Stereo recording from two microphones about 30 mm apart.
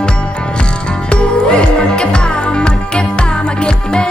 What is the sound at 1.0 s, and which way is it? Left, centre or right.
Music, left.